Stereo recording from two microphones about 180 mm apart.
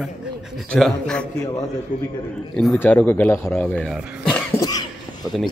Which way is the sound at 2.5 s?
5° left (ahead or behind).